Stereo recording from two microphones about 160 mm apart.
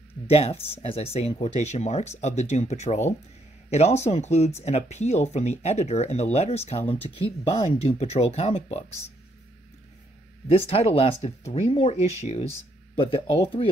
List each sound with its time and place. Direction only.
0.3 s speech: 40° left (ahead or behind)
10.7 s speech: 40° left (ahead or behind)